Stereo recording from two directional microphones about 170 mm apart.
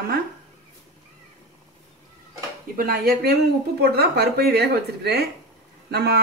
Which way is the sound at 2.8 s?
60° right (ahead or behind).